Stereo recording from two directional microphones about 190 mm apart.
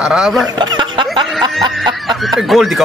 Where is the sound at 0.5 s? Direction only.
25° right (ahead or behind).